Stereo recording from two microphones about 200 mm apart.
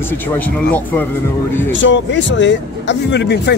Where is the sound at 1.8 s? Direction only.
65° left (ahead or behind).